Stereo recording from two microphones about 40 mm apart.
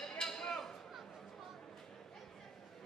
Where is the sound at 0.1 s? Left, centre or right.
Centre.